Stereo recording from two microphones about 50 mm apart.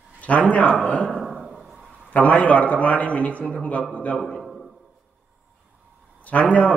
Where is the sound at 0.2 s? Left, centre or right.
Left.